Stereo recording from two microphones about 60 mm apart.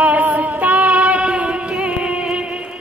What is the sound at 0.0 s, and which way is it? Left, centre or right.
Music, right.